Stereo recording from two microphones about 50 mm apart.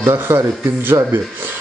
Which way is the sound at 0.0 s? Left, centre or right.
Right.